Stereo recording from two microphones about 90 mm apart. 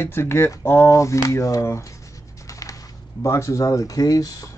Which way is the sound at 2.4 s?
40° left (ahead or behind).